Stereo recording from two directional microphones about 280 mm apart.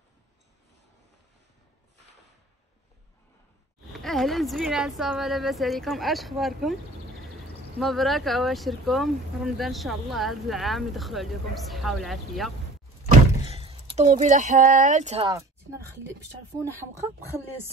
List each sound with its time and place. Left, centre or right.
4.0 s speech: centre
7.8 s speech: centre
13.5 s speech: centre